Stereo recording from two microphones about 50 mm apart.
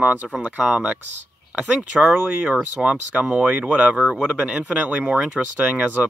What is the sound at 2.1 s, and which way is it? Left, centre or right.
Speech, right.